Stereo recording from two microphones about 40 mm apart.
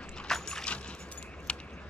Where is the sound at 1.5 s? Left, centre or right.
Left.